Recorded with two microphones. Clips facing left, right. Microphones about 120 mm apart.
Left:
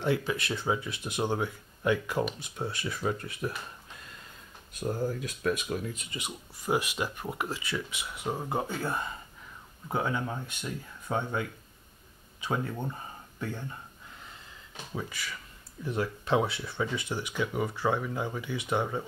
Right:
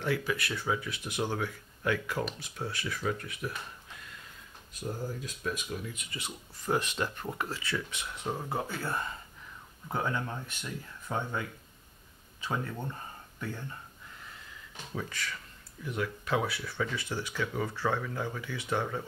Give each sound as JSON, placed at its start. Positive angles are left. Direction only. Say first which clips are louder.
{"t": 0.0, "sound": "speech", "louder": "left 2 dB", "side_deg": 25}
{"t": 4.7, "sound": "speech", "louder": "left 6 dB", "side_deg": 65}
{"t": 6.1, "sound": "speech", "louder": "left 2 dB", "side_deg": 15}
{"t": 15.0, "sound": "speech", "louder": "even", "side_deg": 10}
{"t": 15.8, "sound": "speech", "louder": "left 3 dB", "side_deg": 30}